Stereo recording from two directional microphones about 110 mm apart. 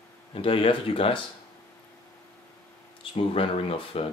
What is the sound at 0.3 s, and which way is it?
Speech, 55° left (ahead or behind).